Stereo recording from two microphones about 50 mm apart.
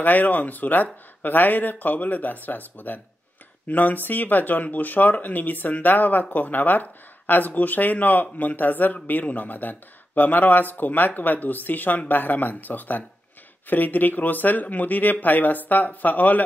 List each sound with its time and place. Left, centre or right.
0.0 s speech: left